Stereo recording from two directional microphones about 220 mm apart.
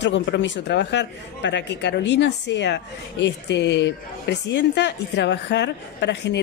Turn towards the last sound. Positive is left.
turn(degrees=50)  # may be behind; listen again after turning